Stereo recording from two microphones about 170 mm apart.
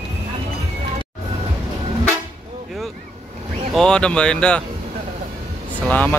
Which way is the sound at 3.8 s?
5° left (ahead or behind).